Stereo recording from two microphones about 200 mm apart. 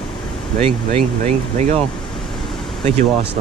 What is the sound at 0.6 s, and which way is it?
Speech, 30° right (ahead or behind).